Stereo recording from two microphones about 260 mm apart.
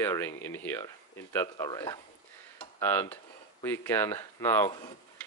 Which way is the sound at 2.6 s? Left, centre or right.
Centre.